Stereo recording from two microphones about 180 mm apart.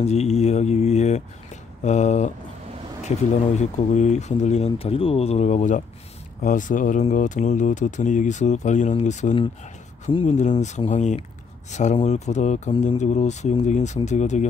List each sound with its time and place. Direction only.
0.0 s speech: 35° left (ahead or behind)